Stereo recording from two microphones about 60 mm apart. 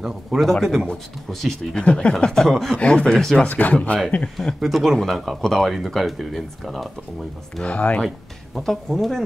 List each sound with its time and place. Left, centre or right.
0.0 s speech: centre
1.8 s speech: centre
2.1 s speech: centre
2.8 s speech: centre
3.3 s speech: left
4.6 s speech: centre
7.6 s speech: left
8.5 s speech: centre